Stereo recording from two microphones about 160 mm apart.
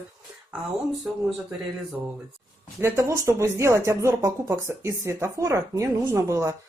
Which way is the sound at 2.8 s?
15° right (ahead or behind).